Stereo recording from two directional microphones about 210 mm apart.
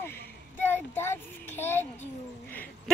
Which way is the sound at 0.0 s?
10° left (ahead or behind).